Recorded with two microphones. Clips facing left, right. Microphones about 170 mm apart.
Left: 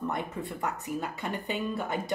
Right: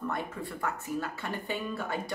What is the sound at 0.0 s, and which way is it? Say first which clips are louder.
A woman's voice: left 2 dB; 20° left (ahead or behind).